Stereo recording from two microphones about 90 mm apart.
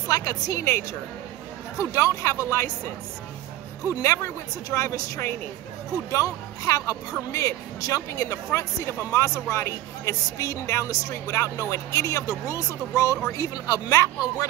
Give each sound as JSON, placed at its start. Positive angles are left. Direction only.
{"t": 0.1, "sound": "speech", "side_deg": 40}
{"t": 4.0, "sound": "speech", "side_deg": 35}